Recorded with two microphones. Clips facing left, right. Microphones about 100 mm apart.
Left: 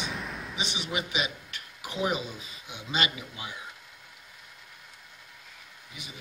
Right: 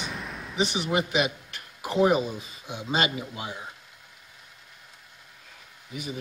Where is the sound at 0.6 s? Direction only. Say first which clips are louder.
Right 8 dB; 45° right (ahead or behind).